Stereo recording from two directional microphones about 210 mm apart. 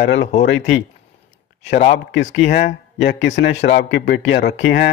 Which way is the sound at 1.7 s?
35° left (ahead or behind).